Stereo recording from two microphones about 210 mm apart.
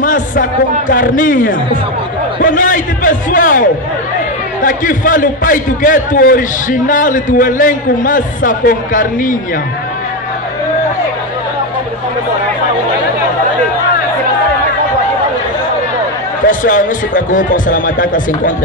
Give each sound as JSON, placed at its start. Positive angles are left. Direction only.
{"t": 0.0, "sound": "a man's voice", "side_deg": 40}
{"t": 16.4, "sound": "a man's voice", "side_deg": 40}